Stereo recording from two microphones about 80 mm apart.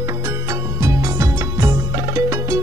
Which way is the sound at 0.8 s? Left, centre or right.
Right.